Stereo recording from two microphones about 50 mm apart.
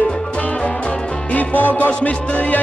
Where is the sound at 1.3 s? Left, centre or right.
Left.